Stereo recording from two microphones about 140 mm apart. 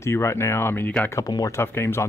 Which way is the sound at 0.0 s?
20° left (ahead or behind).